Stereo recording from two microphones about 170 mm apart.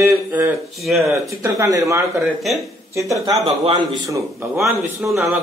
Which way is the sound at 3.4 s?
30° right (ahead or behind).